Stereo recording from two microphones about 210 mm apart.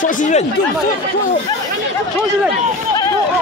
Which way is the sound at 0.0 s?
35° left (ahead or behind).